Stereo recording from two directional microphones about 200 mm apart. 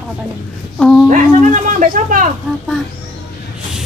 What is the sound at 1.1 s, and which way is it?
Speech, 40° right (ahead or behind).